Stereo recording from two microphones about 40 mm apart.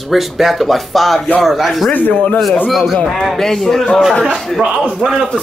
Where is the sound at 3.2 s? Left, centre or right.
Centre.